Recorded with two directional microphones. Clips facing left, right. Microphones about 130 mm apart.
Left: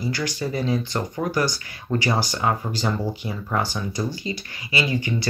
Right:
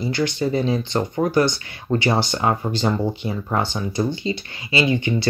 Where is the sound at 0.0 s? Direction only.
25° right (ahead or behind).